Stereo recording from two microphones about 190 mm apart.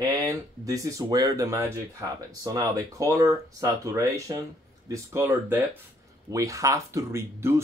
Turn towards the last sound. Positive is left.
turn(degrees=-15)  # may be behind; listen again after turning